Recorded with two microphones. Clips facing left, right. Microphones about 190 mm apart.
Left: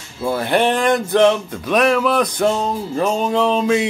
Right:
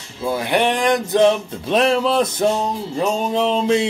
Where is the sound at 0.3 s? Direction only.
15° right (ahead or behind).